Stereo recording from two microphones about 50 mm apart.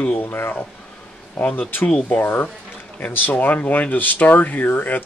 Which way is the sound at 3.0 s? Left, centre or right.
Left.